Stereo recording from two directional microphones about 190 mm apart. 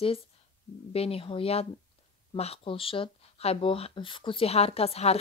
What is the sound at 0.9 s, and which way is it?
Speech, 30° left (ahead or behind).